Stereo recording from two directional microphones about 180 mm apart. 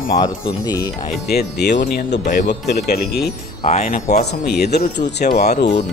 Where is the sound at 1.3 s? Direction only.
65° left (ahead or behind).